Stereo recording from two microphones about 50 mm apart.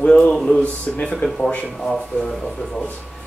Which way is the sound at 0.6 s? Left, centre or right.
Left.